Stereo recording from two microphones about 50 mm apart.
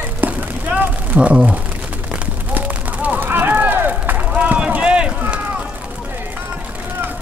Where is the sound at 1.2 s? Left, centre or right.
Right.